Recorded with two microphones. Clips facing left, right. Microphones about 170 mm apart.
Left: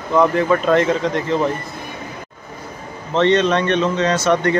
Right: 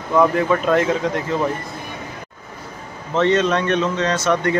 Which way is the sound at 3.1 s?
5° right (ahead or behind).